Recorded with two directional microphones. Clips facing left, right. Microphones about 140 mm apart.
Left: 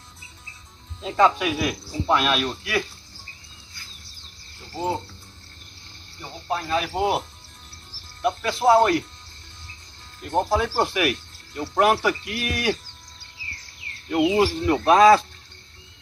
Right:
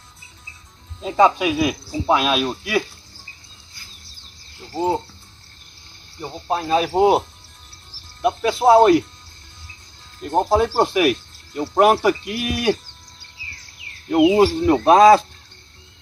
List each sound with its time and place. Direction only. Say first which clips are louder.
1.1 s speech: right 3 dB; 20° right (ahead or behind)
6.2 s speech: right 5 dB; 30° right (ahead or behind)
8.2 s speech: right 5 dB; 15° right (ahead or behind)
10.5 s speech: right 8 dB; 25° right (ahead or behind)
14.1 s speech: right 6 dB; 25° right (ahead or behind)